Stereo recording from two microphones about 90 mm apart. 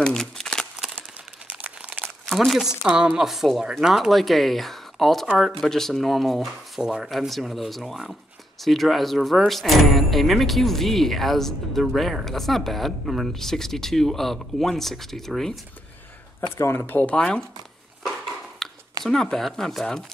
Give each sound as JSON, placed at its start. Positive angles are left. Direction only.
{"t": 0.0, "sound": "crumpling", "side_deg": 5}
{"t": 1.5, "sound": "crumpling", "side_deg": -15}
{"t": 2.2, "sound": "speech", "side_deg": 0}
{"t": 16.3, "sound": "speech", "side_deg": 30}
{"t": 18.6, "sound": "a sound", "side_deg": 5}
{"t": 19.0, "sound": "speech", "side_deg": 5}